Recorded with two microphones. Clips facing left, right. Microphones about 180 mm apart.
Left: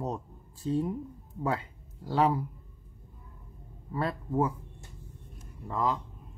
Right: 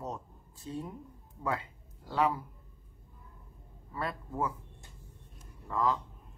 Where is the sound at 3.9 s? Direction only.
30° left (ahead or behind).